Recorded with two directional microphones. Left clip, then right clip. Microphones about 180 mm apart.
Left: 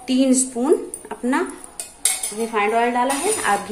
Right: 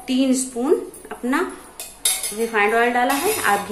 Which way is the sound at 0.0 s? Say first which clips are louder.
Left 2 dB; 15° left (ahead or behind).